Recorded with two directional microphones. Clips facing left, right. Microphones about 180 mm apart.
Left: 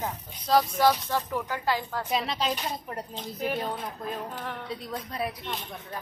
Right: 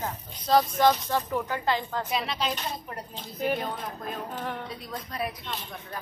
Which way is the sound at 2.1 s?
35° left (ahead or behind).